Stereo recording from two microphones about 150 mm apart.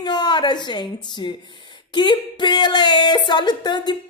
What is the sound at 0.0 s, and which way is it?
A woman's voice, 30° left (ahead or behind).